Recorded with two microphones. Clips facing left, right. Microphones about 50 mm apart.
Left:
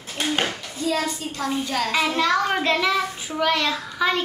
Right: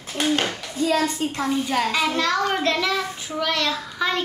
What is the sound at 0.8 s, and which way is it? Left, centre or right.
Speech, right.